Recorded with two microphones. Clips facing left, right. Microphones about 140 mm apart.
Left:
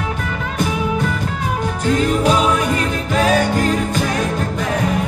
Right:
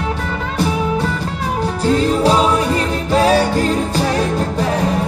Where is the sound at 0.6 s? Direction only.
35° right (ahead or behind).